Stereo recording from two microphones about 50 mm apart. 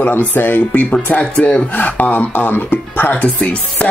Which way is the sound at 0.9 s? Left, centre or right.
Left.